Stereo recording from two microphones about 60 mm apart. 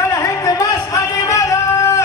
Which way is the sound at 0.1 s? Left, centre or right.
Left.